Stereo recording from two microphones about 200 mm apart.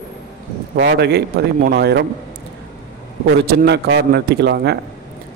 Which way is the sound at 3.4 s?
50° right (ahead or behind).